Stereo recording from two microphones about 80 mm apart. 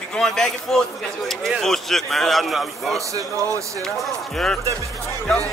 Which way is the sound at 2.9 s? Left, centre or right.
Right.